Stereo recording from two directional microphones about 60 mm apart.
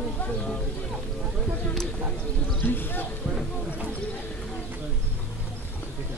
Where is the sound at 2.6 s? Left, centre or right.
Left.